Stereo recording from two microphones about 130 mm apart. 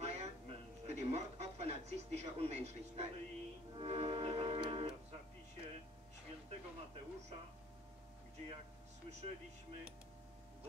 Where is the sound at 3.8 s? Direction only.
50° right (ahead or behind).